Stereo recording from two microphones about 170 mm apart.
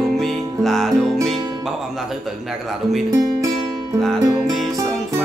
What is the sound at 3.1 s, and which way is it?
Speech, 20° right (ahead or behind).